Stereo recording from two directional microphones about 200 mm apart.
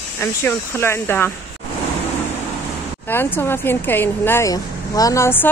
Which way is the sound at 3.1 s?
10° left (ahead or behind).